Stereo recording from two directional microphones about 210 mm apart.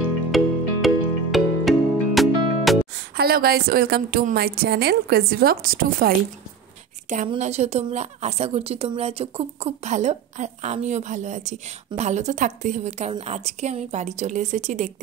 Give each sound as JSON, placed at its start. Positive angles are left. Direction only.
{"t": 0.3, "sound": "music", "side_deg": 0}
{"t": 3.2, "sound": "a woman's voice", "side_deg": -45}
{"t": 7.2, "sound": "a woman's voice", "side_deg": -30}